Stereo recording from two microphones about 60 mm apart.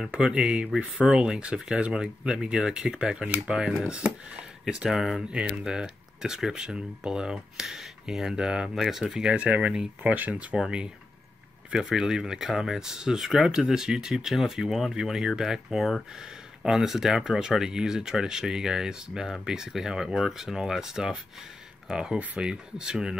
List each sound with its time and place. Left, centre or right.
0.1 s speech: centre
5.2 s speech: centre